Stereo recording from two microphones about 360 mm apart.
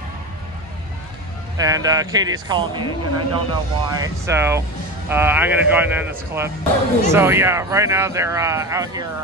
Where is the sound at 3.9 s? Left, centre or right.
Centre.